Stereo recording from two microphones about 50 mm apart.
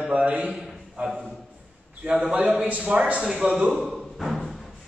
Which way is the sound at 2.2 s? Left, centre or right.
Right.